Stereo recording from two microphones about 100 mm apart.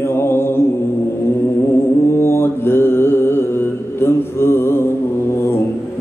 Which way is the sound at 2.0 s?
25° left (ahead or behind).